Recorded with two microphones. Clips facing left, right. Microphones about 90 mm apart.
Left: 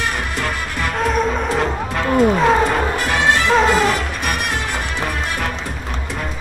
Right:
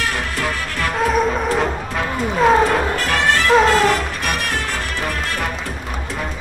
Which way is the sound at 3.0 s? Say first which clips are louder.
Left 1 dB; 15° left (ahead or behind).